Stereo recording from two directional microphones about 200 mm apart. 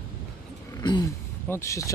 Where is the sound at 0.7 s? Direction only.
20° left (ahead or behind).